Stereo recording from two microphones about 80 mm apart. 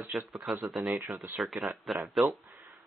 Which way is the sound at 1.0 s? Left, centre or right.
Right.